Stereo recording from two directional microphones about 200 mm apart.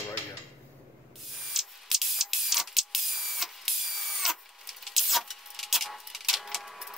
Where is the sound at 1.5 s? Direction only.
Centre (ahead or behind).